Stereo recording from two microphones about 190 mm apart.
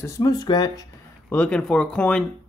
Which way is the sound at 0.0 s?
20° left (ahead or behind).